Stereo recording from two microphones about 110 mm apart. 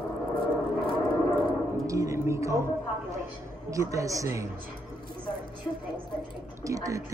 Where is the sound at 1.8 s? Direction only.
30° right (ahead or behind).